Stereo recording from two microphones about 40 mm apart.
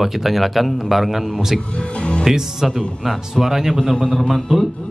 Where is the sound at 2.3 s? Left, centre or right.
Centre.